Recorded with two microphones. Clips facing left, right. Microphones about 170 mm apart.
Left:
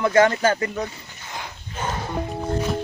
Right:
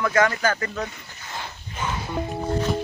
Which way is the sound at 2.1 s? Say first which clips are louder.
Even; centre (ahead or behind).